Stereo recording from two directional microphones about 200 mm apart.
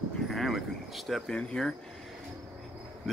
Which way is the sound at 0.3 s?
Centre (ahead or behind).